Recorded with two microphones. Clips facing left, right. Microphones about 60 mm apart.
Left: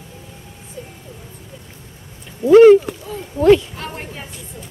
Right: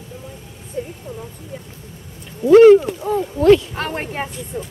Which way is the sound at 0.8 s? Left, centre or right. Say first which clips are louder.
Right 8 dB; right.